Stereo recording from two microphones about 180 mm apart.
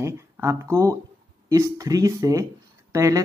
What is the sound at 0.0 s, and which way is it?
Speech, 15° right (ahead or behind).